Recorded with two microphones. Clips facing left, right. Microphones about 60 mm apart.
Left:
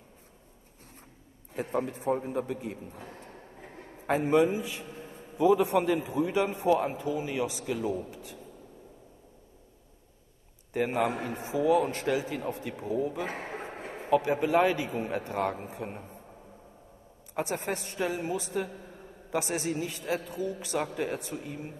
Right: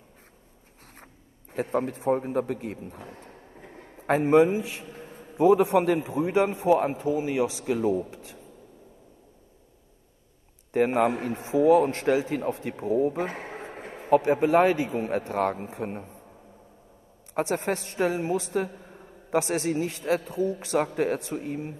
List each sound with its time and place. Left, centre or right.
1.5 s a man's voice: right
4.0 s a man's voice: right
7.6 s speech: right
10.7 s a man's voice: right
11.0 s a man's voice: right
12.9 s a man's voice: right
17.4 s a man's voice: right